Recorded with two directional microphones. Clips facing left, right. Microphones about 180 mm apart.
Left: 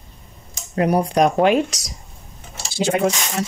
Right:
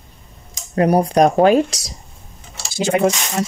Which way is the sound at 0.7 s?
40° right (ahead or behind).